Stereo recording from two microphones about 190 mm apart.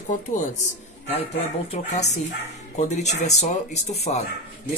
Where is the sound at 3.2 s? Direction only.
35° left (ahead or behind).